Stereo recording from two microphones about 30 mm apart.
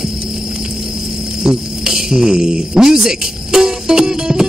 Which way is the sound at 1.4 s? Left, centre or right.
Right.